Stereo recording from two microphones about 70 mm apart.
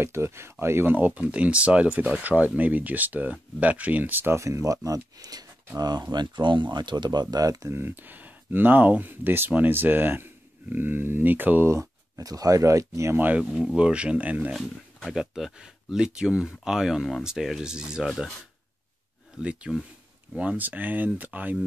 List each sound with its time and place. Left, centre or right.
0.0 s speech: right
0.9 s speech: right
4.4 s speech: right
5.8 s speech: right
7.7 s speech: right
11.7 s a sound: right
12.3 s speech: right
13.1 s speech: right
13.7 s speech: centre
14.6 s speech: centre
15.1 s speech: centre
19.7 s speech: centre
20.3 s speech: right